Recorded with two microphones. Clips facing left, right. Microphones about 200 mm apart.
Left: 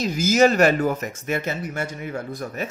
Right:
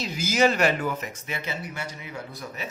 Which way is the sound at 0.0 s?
45° left (ahead or behind).